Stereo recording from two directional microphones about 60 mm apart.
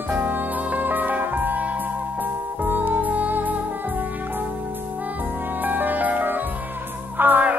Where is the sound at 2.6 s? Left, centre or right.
Right.